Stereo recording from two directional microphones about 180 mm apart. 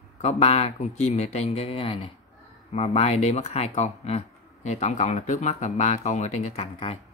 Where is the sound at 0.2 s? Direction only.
35° left (ahead or behind).